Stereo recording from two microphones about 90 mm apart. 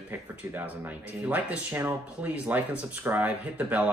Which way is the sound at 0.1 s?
20° right (ahead or behind).